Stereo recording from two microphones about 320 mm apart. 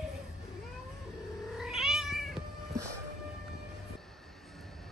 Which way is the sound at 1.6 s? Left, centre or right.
Centre.